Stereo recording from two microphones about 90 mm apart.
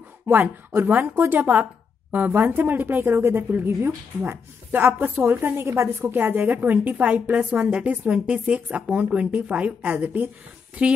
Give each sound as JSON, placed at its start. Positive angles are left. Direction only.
{"t": 0.3, "sound": "a woman's voice", "side_deg": -20}